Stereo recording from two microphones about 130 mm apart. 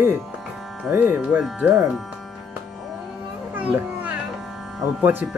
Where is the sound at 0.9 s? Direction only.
15° right (ahead or behind).